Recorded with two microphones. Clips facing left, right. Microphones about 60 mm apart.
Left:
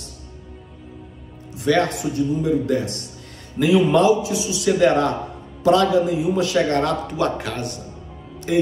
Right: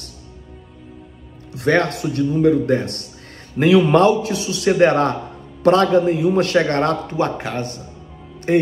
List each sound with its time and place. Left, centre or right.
1.5 s music: right
1.8 s a man's voice: right